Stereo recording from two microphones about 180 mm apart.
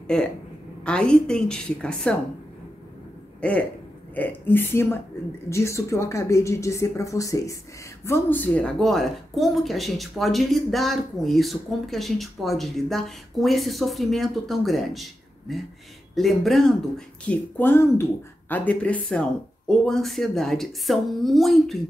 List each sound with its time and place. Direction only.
0.1 s a woman's voice: 5° left (ahead or behind)
3.3 s a man's voice: 5° left (ahead or behind)